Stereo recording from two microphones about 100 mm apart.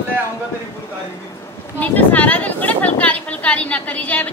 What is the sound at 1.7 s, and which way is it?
Speech, 15° left (ahead or behind).